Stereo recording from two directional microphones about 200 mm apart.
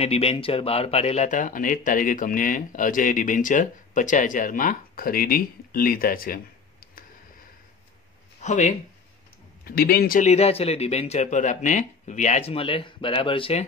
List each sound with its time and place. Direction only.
0.0 s speech: 30° left (ahead or behind); by 7.1 s 45° left (ahead or behind)
8.4 s speech: 35° left (ahead or behind)
9.7 s speech: 50° left (ahead or behind); by 13.7 s 30° left (ahead or behind)